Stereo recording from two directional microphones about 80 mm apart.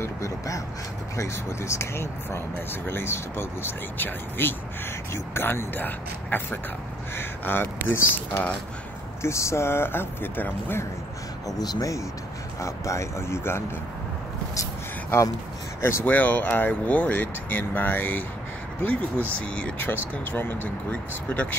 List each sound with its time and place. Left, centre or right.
0.0 s speech: left
9.2 s speech: left
11.4 s speech: left
12.5 s speech: left
15.8 s speech: left